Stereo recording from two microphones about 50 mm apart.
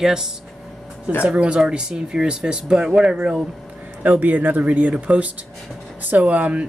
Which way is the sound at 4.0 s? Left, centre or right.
Right.